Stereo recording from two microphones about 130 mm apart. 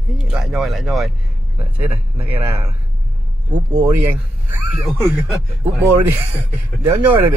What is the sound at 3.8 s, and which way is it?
Speech, 15° right (ahead or behind).